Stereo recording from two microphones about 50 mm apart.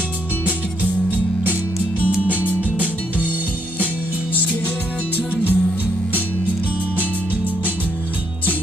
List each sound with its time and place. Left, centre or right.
1.1 s music: right
5.3 s music: right